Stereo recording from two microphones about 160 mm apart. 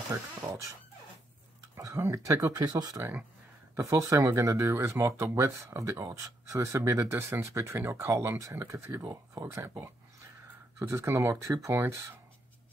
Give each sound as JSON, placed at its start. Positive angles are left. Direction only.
{"t": 0.4, "sound": "speech", "side_deg": -20}
{"t": 1.8, "sound": "speech", "side_deg": -20}